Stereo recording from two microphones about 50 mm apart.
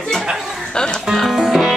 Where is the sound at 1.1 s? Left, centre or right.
Centre.